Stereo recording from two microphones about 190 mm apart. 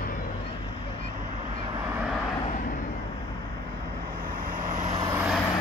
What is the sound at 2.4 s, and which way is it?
Vehicle, 40° left (ahead or behind).